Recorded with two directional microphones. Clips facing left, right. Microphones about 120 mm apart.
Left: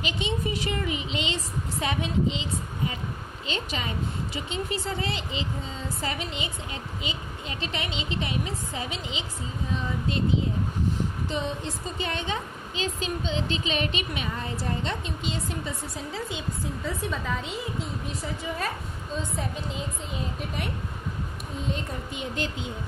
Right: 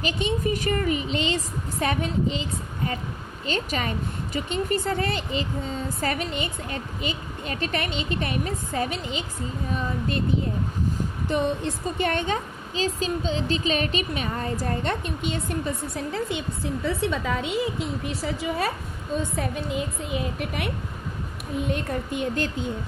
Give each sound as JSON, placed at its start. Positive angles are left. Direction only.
{"t": 0.0, "sound": "a woman's voice", "side_deg": -45}
{"t": 12.7, "sound": "a woman's voice", "side_deg": -35}
{"t": 17.0, "sound": "a woman's voice", "side_deg": -80}
{"t": 19.3, "sound": "a woman's voice", "side_deg": -65}